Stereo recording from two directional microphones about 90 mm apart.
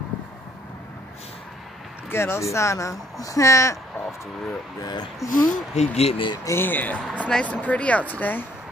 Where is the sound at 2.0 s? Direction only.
25° left (ahead or behind).